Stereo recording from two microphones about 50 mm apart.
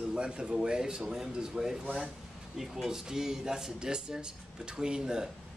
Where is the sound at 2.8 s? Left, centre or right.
Centre.